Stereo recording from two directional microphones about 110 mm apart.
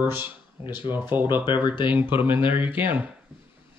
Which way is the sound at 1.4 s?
45° left (ahead or behind).